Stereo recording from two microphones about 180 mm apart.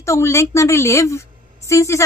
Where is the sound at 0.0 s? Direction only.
15° left (ahead or behind).